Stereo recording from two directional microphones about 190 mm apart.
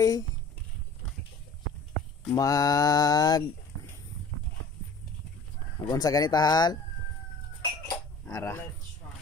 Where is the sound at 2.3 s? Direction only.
20° left (ahead or behind).